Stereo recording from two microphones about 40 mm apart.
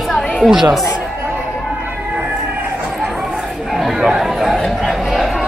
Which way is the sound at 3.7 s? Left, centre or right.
Centre.